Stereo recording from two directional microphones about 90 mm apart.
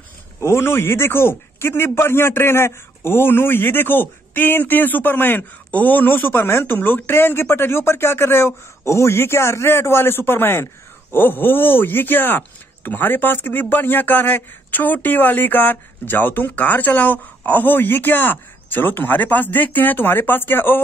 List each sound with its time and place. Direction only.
0.5 s a man's voice: 25° left (ahead or behind)